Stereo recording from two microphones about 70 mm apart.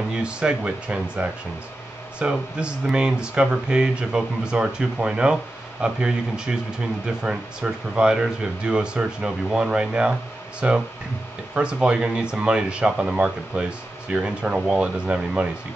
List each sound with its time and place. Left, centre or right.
0.1 s speech: centre